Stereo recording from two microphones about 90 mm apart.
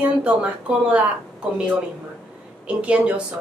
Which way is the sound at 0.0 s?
15° right (ahead or behind).